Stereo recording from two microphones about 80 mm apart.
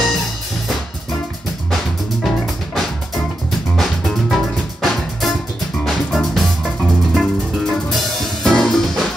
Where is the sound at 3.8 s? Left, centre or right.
Centre.